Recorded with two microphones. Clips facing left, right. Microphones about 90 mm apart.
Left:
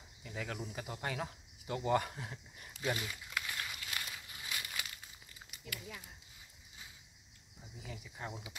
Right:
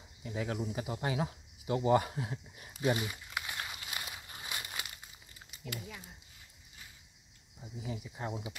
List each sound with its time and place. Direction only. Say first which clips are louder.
0.2 s speech: right 6 dB; 10° right (ahead or behind)
2.8 s walk: right 6 dB; 20° right (ahead or behind)
4.3 s a sound: right 2 dB; 30° right (ahead or behind)
5.7 s speech: right 4 dB; 25° right (ahead or behind)
7.6 s speech: right 8 dB; 20° right (ahead or behind)